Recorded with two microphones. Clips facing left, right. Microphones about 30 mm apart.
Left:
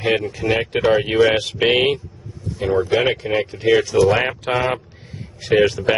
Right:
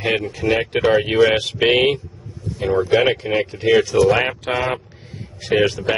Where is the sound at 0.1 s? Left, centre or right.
Centre.